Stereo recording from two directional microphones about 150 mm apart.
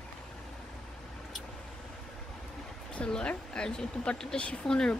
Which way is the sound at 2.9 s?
5° left (ahead or behind).